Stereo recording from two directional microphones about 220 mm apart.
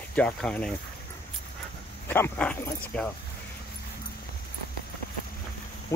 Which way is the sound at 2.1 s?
10° left (ahead or behind).